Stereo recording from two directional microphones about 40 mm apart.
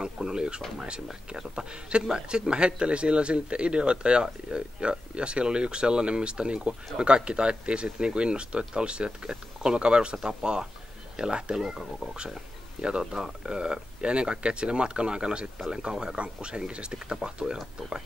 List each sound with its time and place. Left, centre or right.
0.0 s a sound: centre
1.3 s speech: right
11.5 s speech: centre
13.1 s speech: centre
15.9 s speech: centre
16.2 s speech: right